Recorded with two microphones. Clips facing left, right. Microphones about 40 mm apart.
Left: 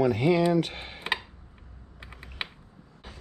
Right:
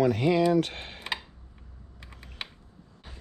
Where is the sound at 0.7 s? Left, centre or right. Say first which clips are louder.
Left 3 dB; centre.